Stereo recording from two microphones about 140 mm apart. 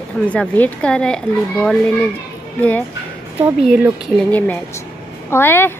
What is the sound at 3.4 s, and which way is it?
Speech, 10° right (ahead or behind).